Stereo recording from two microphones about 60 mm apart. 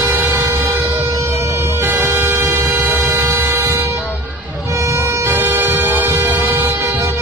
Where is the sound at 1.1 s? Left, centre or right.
Right.